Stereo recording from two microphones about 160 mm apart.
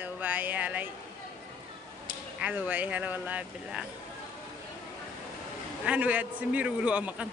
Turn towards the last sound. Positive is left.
turn(degrees=-10)  # may be behind; listen again after turning